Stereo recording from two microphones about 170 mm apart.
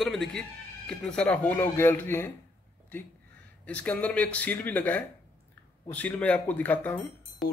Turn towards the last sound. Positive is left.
turn(degrees=10)  # may be behind; listen again after turning